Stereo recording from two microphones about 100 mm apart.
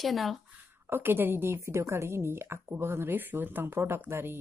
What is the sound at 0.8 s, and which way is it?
Speech, 20° right (ahead or behind).